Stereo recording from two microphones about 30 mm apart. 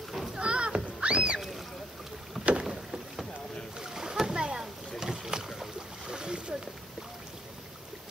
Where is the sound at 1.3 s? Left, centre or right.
Centre.